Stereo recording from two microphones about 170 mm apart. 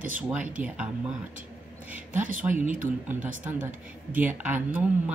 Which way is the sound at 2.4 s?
10° right (ahead or behind).